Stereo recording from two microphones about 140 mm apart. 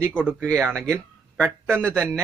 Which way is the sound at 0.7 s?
20° right (ahead or behind).